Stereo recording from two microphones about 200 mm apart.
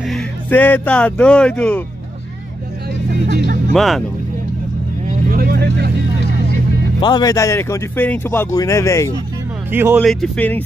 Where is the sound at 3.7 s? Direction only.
Centre (ahead or behind).